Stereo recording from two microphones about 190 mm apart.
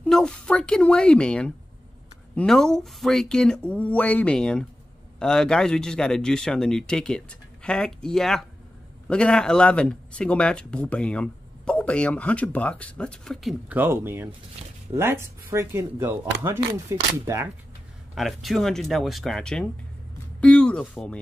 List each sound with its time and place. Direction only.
0.0 s speech: 5° left (ahead or behind); by 17.5 s 15° right (ahead or behind)
18.1 s speech: centre (ahead or behind)